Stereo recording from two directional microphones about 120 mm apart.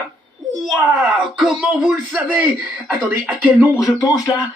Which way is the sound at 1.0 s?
5° right (ahead or behind).